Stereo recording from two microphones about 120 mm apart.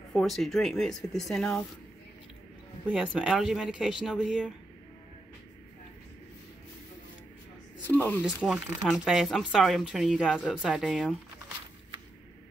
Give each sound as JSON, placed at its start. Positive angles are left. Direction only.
{"t": 0.1, "sound": "speech", "side_deg": 0}
{"t": 3.2, "sound": "speech", "side_deg": -5}
{"t": 7.8, "sound": "speech", "side_deg": 15}
{"t": 8.2, "sound": "speech", "side_deg": -5}